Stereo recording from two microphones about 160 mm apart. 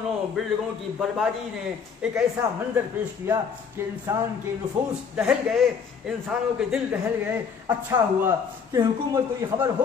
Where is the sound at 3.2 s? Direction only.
15° right (ahead or behind).